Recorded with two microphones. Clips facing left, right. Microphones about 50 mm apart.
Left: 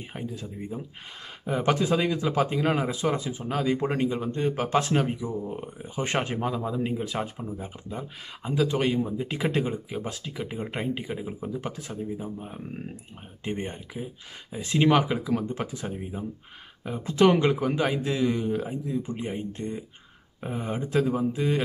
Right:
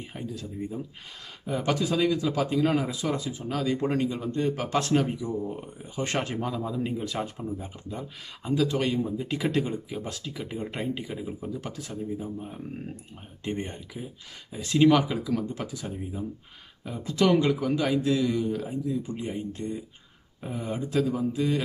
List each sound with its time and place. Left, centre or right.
0.1 s speech: left